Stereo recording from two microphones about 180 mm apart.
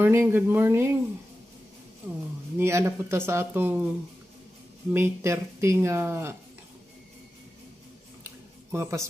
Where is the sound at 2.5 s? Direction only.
15° right (ahead or behind).